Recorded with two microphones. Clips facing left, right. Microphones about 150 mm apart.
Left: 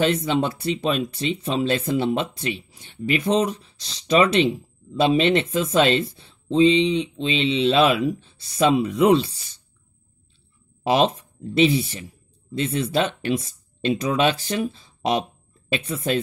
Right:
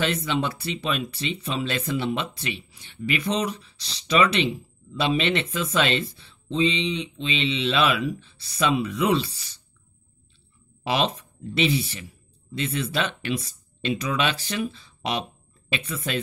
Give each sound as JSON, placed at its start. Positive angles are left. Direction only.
{"t": 0.0, "sound": "speech", "side_deg": 45}
{"t": 10.8, "sound": "a sound", "side_deg": 45}
{"t": 11.4, "sound": "speech", "side_deg": 45}